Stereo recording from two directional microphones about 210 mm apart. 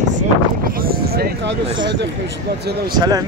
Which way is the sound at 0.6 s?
45° right (ahead or behind).